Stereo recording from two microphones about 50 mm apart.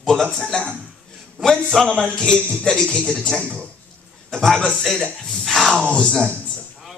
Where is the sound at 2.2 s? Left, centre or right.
Centre.